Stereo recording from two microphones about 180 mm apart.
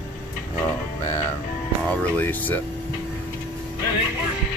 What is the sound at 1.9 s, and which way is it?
Speech, 10° left (ahead or behind).